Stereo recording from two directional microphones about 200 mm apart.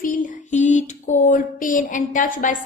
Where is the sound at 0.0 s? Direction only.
40° left (ahead or behind).